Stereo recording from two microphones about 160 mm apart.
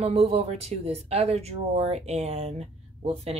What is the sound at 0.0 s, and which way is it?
Speech, 40° right (ahead or behind).